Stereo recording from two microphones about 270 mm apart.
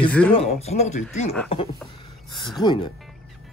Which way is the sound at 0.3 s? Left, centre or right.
Left.